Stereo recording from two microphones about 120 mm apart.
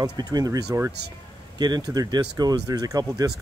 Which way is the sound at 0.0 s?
35° right (ahead or behind).